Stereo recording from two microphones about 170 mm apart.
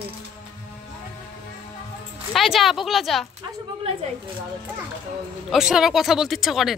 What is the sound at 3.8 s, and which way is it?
Speech, 35° right (ahead or behind).